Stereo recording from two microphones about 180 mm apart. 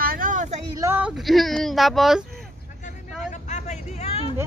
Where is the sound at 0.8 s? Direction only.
10° right (ahead or behind).